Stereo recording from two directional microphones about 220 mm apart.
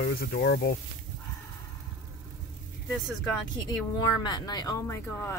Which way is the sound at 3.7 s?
20° left (ahead or behind).